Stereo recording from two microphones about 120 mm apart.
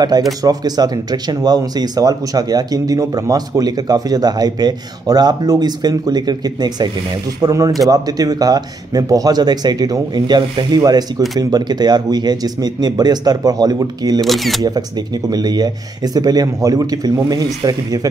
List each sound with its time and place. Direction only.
0.4 s speech: 35° right (ahead or behind)
14.2 s speech: centre (ahead or behind)
15.2 s speech: 35° right (ahead or behind)